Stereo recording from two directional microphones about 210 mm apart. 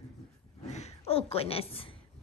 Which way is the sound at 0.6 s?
35° left (ahead or behind).